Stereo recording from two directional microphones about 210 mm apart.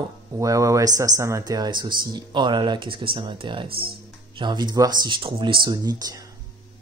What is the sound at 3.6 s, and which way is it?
Speech, 45° right (ahead or behind).